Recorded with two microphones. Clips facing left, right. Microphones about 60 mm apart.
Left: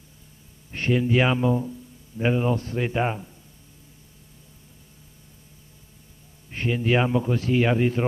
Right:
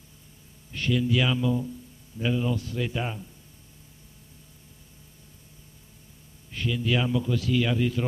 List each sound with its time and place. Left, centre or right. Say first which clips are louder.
0.7 s a man's voice: left 3 dB; left
6.5 s a man's voice: left 4 dB; left